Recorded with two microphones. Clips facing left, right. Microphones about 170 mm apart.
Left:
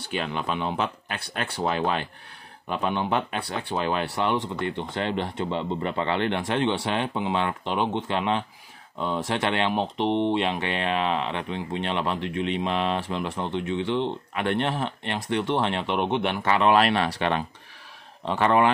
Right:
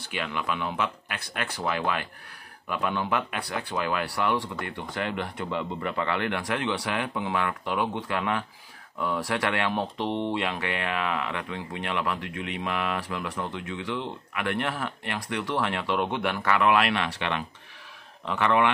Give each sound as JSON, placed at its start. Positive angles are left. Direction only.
{"t": 0.0, "sound": "speech", "side_deg": 30}